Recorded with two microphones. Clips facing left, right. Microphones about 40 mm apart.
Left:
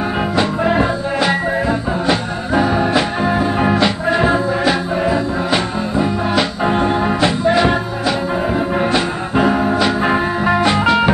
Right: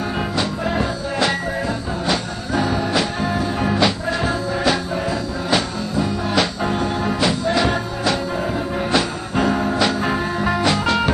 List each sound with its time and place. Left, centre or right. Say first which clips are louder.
0.4 s music: left 7 dB; left